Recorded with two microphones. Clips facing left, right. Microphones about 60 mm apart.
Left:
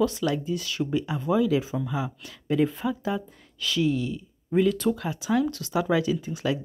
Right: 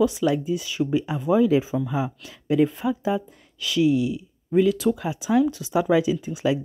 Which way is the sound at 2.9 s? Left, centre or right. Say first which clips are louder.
Right 4 dB; centre.